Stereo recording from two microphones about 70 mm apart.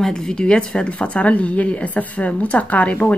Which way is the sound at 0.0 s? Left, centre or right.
Centre.